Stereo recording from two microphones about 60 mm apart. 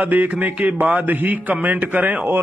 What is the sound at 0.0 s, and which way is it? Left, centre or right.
A man's voice, right.